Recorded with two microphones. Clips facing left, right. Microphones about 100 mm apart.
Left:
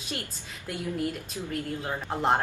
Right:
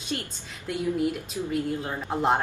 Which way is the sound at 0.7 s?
5° left (ahead or behind).